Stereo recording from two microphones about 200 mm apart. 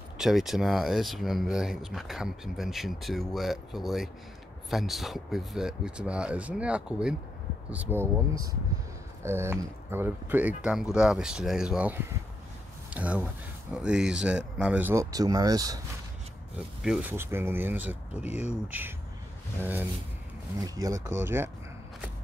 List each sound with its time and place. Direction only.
0.2 s speech: centre (ahead or behind); by 15.8 s 20° right (ahead or behind)
16.8 s speech: 5° right (ahead or behind)
18.2 s speech: 35° left (ahead or behind)
18.7 s speech: 10° right (ahead or behind)